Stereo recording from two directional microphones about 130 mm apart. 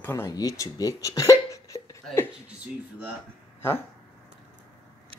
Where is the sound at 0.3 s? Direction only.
30° left (ahead or behind).